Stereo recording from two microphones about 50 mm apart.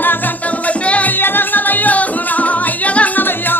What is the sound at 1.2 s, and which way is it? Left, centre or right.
Music, left.